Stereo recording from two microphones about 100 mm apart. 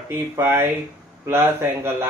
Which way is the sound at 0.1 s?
25° right (ahead or behind).